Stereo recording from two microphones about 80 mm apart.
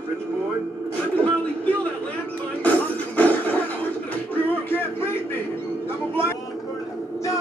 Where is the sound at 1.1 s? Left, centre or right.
Centre.